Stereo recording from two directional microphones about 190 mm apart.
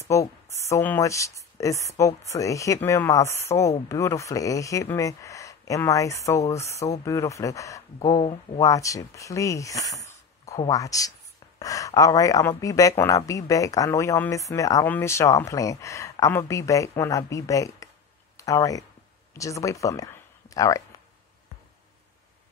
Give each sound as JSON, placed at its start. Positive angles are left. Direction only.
{"t": 0.1, "sound": "speech", "side_deg": 15}